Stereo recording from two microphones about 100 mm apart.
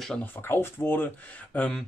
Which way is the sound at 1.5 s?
10° left (ahead or behind).